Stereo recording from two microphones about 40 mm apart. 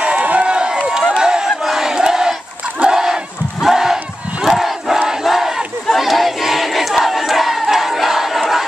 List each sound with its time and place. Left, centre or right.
0.0 s run: right
1.1 s battle cry: centre
3.6 s crowd: centre
5.9 s battle cry: centre